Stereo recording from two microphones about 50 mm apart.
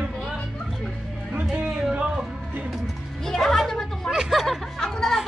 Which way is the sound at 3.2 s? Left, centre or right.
Centre.